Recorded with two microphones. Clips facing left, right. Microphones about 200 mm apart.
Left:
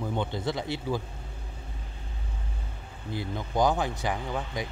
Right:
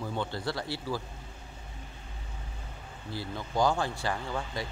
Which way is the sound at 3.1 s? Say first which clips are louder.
Left 4 dB; 20° left (ahead or behind).